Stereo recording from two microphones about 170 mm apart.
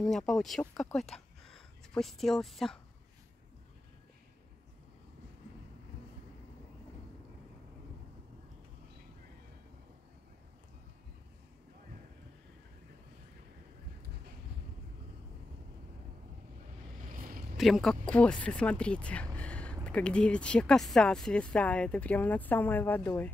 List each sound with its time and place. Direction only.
0.0 s speech: 5° left (ahead or behind)
17.1 s a sound: 55° right (ahead or behind)
17.6 s speech: centre (ahead or behind)